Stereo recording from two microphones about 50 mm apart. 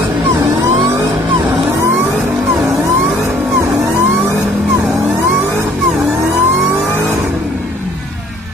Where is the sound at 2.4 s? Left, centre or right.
Centre.